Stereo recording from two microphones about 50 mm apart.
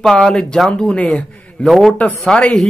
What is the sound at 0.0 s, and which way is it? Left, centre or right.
Speech, centre.